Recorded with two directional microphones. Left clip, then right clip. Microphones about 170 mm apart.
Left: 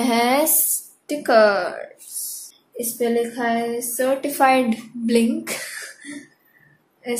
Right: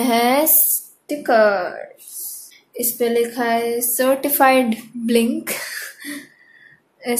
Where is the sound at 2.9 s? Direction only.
25° right (ahead or behind); by 5.3 s 10° right (ahead or behind).